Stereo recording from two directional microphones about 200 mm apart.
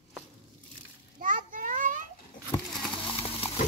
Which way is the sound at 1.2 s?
40° right (ahead or behind).